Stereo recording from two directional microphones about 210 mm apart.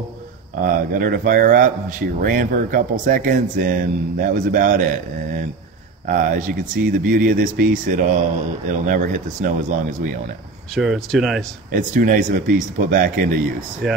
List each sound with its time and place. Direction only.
0.6 s speech: 40° right (ahead or behind)
10.7 s speech: centre (ahead or behind)
11.7 s speech: 40° right (ahead or behind)
13.8 s speech: centre (ahead or behind)